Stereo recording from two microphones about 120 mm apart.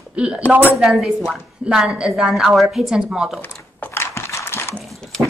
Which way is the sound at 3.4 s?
20° left (ahead or behind).